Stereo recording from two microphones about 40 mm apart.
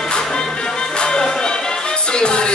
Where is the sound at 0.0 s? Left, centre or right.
Centre.